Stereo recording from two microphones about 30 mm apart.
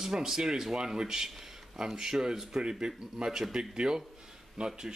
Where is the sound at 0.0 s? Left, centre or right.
Centre.